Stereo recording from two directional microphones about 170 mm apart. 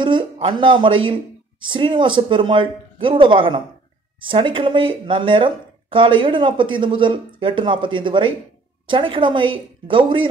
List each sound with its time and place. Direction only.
0.0 s speech: 30° right (ahead or behind)